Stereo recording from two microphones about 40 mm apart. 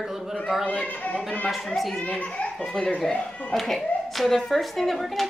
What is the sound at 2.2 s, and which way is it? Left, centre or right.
Speech, left.